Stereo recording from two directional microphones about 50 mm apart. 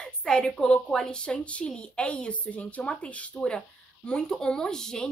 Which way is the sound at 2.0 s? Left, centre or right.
Left.